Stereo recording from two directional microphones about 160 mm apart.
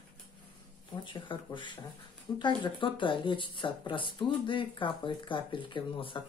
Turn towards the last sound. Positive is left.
turn(degrees=30)  # may be behind; listen again after turning